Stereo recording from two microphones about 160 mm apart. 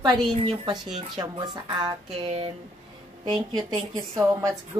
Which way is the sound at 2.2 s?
35° right (ahead or behind).